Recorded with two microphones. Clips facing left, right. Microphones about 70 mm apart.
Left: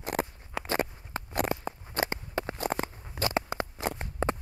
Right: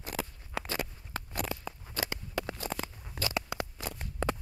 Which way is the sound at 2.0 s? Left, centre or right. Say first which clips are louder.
Left 4 dB; left.